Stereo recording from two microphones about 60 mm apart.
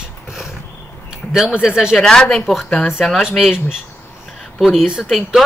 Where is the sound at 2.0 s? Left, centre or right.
Centre.